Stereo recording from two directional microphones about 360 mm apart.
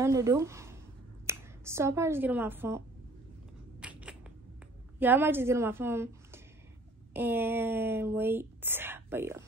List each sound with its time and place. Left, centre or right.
0.0 s speech: centre
3.8 s a sound: centre
4.9 s a woman's voice: centre